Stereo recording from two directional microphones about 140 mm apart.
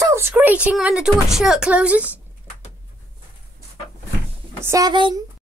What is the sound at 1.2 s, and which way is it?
Speech, 5° right (ahead or behind).